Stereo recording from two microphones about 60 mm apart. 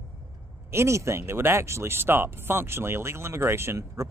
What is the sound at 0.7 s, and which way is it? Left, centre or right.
Speech, right.